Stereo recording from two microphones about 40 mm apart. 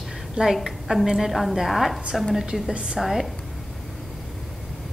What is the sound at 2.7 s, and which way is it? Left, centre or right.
Speech, right.